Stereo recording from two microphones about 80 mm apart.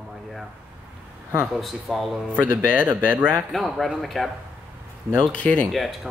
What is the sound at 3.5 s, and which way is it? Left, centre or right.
Speech, centre.